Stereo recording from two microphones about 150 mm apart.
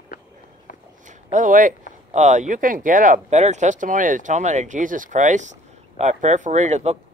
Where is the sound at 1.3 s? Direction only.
60° right (ahead or behind).